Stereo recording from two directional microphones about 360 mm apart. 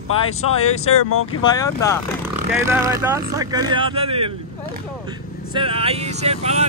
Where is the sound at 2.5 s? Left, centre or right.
Centre.